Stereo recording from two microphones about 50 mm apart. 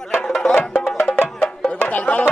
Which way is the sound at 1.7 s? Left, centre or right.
Left.